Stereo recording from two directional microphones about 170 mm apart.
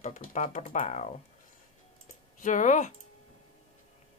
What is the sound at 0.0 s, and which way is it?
Speech, 45° left (ahead or behind).